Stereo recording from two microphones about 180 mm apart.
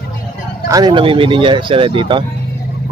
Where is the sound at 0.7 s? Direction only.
25° right (ahead or behind).